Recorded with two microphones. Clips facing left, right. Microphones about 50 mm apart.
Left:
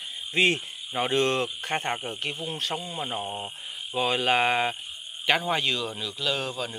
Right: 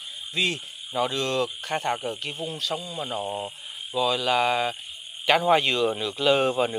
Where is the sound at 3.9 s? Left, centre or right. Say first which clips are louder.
Right 1 dB; left.